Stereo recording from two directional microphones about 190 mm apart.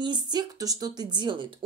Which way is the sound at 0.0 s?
20° right (ahead or behind).